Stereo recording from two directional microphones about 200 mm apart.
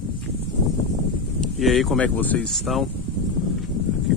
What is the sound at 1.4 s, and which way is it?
Speech, centre (ahead or behind).